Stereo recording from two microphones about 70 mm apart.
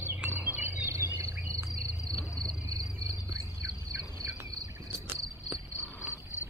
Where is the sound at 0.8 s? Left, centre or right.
Right.